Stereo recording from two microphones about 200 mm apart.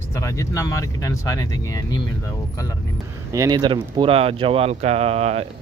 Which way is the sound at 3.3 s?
20° right (ahead or behind).